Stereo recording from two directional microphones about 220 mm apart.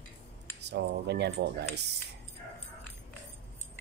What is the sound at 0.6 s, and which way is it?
Speech, 50° right (ahead or behind).